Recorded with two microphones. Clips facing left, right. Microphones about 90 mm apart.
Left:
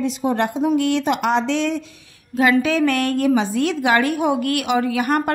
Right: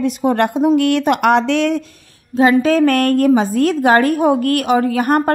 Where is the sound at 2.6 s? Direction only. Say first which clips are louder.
Right 5 dB; 40° right (ahead or behind).